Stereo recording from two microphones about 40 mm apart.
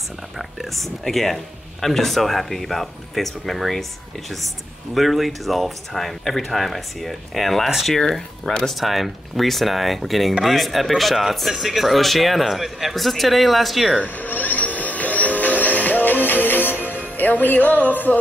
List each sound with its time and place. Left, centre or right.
0.4 s speech: centre
4.9 s speech: centre
8.7 s speech: centre
14.0 s music: left